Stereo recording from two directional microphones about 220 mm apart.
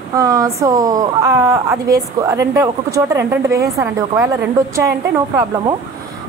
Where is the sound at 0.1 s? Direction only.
15° right (ahead or behind).